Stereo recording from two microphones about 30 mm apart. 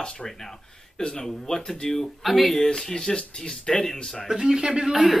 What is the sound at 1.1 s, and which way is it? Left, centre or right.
Speech, centre.